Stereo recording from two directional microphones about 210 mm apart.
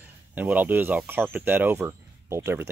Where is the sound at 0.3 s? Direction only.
10° right (ahead or behind).